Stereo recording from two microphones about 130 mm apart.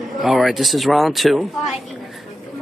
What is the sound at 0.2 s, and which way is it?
Speech, centre (ahead or behind).